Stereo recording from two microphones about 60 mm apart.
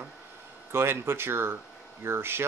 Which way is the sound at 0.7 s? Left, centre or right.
Right.